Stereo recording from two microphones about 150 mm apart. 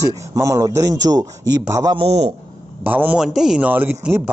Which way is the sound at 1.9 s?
45° right (ahead or behind).